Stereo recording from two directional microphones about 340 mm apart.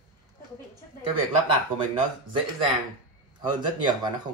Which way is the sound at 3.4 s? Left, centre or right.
Centre.